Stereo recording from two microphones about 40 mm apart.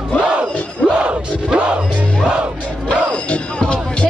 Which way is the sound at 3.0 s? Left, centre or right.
Left.